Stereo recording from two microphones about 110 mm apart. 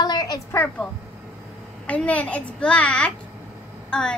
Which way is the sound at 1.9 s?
10° left (ahead or behind).